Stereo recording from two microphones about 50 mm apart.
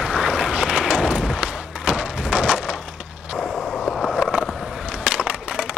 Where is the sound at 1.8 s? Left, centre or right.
Centre.